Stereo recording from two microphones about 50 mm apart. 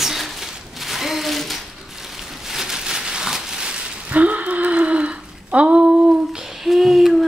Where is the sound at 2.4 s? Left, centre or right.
Centre.